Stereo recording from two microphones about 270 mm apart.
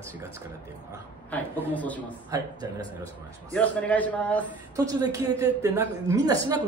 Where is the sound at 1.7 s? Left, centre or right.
Centre.